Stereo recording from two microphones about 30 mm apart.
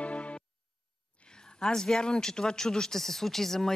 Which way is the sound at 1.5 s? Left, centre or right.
Centre.